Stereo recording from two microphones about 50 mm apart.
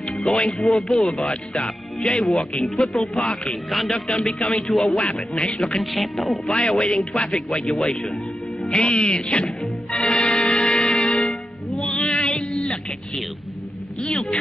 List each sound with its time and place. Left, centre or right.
0.4 s speech: centre
0.7 s speech: centre
4.4 s speech: left
4.6 s speech: centre
5.4 s speech: centre
6.4 s speech: left
6.7 s speech: centre
8.6 s speech: left
9.9 s music: centre